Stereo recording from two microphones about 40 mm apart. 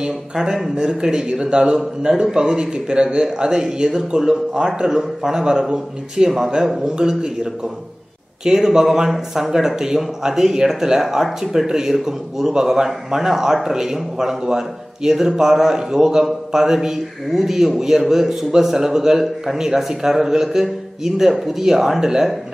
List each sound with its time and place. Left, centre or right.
0.0 s a man's voice: centre
3.9 s a man's voice: centre
8.5 s speech: centre